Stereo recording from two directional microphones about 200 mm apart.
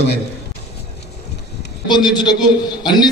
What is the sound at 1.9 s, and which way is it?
A man's voice, 20° left (ahead or behind).